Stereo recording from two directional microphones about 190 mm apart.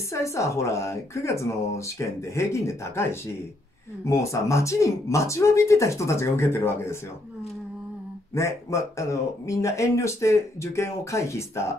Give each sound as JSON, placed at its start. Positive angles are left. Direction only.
{"t": 0.1, "sound": "speech", "side_deg": 15}
{"t": 8.4, "sound": "speech", "side_deg": 15}